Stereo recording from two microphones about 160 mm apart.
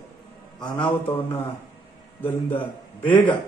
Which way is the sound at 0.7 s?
10° left (ahead or behind).